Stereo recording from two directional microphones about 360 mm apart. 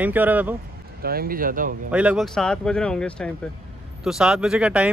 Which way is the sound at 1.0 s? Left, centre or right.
Right.